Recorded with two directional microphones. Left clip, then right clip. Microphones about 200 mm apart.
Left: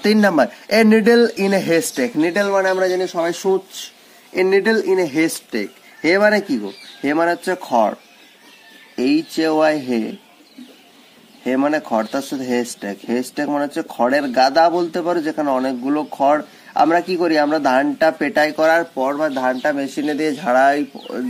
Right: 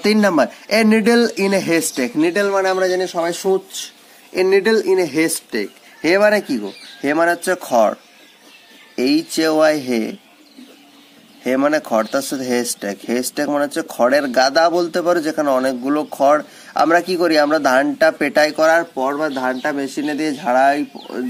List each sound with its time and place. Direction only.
0.0 s speech: 10° right (ahead or behind)
11.4 s speech: 25° right (ahead or behind); by 21.2 s centre (ahead or behind)